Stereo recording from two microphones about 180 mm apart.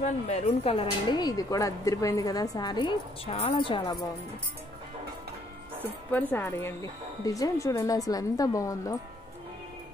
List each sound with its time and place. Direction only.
0.0 s speech: 35° left (ahead or behind)
6.1 s speech: 10° left (ahead or behind)